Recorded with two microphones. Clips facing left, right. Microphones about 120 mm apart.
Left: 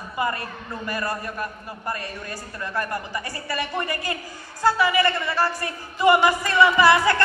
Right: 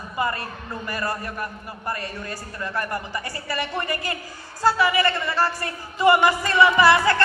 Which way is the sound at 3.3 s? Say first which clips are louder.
Even; 15° left (ahead or behind).